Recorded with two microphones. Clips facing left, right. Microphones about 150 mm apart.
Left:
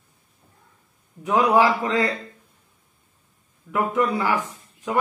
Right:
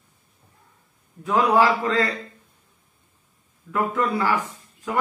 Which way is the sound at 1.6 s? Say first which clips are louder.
Even; 20° left (ahead or behind).